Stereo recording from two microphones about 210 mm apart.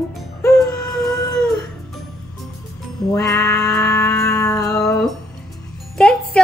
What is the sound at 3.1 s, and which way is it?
Music, 15° left (ahead or behind).